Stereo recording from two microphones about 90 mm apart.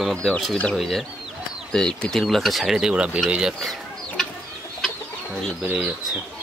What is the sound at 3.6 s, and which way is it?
Chicken, centre (ahead or behind).